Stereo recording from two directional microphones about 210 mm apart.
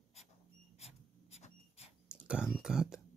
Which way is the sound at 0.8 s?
30° left (ahead or behind).